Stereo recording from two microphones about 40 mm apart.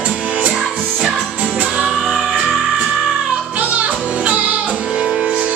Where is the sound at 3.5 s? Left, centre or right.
Right.